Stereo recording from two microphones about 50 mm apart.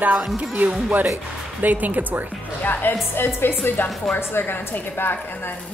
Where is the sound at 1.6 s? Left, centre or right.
Right.